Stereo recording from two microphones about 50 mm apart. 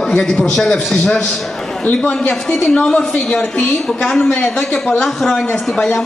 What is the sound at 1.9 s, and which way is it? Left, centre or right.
A woman's voice, centre.